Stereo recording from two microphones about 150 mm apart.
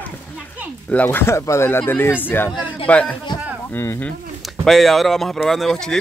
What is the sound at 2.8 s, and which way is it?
Speech, 10° left (ahead or behind).